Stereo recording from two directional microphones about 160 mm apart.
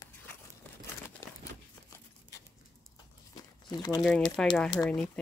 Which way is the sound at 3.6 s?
25° left (ahead or behind).